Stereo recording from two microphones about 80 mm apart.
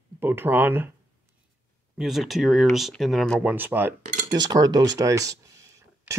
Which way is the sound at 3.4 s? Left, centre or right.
Right.